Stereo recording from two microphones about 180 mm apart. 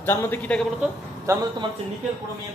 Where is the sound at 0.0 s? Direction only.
10° left (ahead or behind).